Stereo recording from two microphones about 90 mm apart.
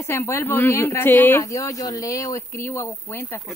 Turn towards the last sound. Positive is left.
turn(degrees=25)  # may be behind; listen again after turning